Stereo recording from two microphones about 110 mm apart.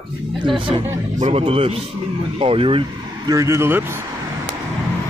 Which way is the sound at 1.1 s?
90° right.